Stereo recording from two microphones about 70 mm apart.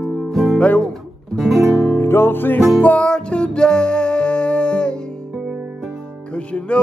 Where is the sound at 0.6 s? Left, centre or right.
Centre.